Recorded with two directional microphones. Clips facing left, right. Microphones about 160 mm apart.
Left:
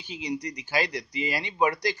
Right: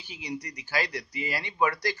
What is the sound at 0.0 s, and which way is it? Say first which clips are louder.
Speech: left 5 dB; 20° left (ahead or behind).